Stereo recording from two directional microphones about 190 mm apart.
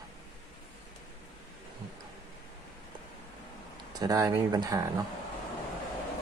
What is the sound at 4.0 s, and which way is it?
Speech, 20° right (ahead or behind).